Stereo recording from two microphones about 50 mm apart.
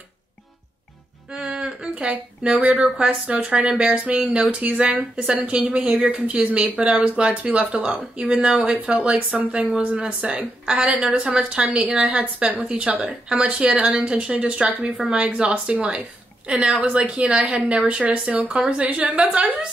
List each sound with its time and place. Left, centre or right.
1.3 s a woman's voice: centre
12.1 s a woman's voice: right